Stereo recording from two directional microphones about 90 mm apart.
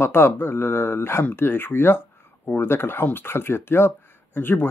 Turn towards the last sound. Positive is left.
turn(degrees=25)  # may be behind; listen again after turning